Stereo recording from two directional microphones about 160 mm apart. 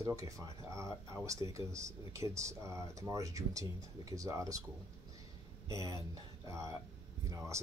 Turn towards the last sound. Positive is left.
turn(degrees=-20)  # may be behind; listen again after turning